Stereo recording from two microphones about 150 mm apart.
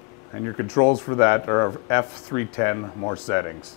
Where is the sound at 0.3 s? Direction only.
20° left (ahead or behind).